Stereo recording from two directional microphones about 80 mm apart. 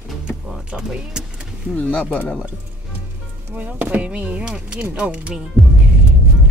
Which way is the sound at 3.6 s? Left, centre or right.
Right.